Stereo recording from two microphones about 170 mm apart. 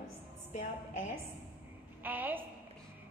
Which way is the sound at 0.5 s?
45° left (ahead or behind).